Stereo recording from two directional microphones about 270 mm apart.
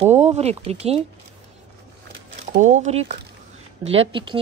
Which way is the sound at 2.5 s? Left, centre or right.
Right.